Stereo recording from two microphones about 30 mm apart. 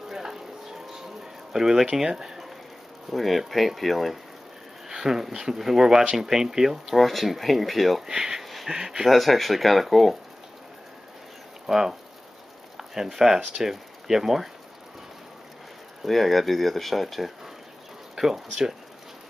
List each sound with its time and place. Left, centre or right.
0.1 s a sound: centre
1.5 s speech: centre
3.1 s speech: centre
4.8 s a sound: centre
5.2 s speech: centre
6.9 s speech: centre
8.1 s speech: centre
9.1 s speech: centre
11.6 s speech: centre
16.0 s speech: centre
18.1 s speech: centre